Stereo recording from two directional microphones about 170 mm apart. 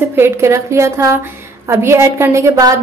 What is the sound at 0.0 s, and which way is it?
A woman's voice, 15° right (ahead or behind).